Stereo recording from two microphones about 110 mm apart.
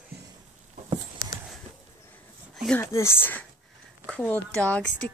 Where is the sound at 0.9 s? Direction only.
30° right (ahead or behind).